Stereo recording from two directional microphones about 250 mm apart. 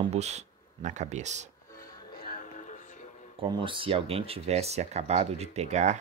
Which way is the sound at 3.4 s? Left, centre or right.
Right.